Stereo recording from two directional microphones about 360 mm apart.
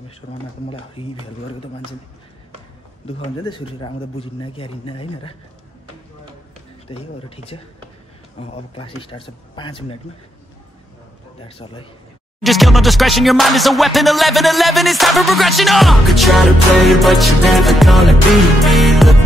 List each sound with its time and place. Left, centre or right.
0.2 s speech: left
0.7 s speech: centre
3.1 s speech: centre
6.9 s speech: centre
11.4 s speech: centre
12.4 s music: centre